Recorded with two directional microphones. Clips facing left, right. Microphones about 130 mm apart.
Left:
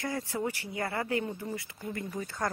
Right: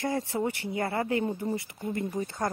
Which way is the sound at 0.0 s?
25° right (ahead or behind).